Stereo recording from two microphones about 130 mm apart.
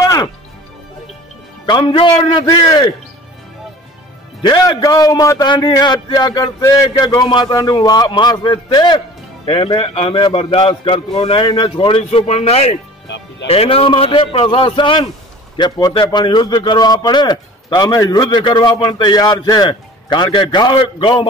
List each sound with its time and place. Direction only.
0.0 s music: 30° left (ahead or behind)
1.7 s a man's voice: 40° left (ahead or behind)
4.4 s a man's voice: 30° left (ahead or behind)
19.7 s a man's voice: 40° left (ahead or behind)